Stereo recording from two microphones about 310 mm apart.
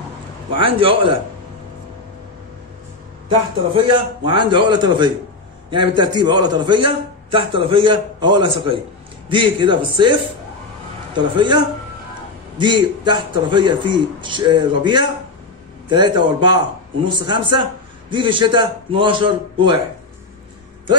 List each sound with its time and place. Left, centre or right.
0.5 s a man's voice: centre
3.3 s a man's voice: centre
11.1 s a man's voice: centre